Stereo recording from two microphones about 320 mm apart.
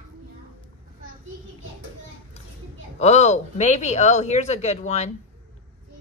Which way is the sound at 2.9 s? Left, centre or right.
Left.